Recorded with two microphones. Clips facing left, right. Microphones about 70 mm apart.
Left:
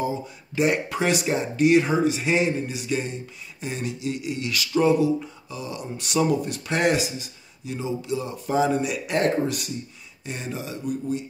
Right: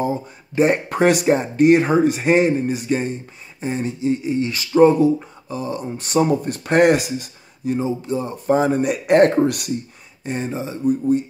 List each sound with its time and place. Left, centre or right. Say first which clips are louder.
0.0 s speech: right 5 dB; right
10.2 s speech: right 7 dB; right